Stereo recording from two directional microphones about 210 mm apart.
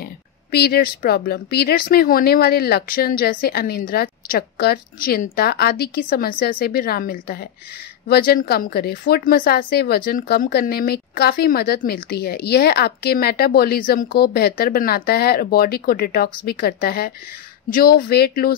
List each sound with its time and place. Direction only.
0.0 s a woman's voice: 50° left (ahead or behind)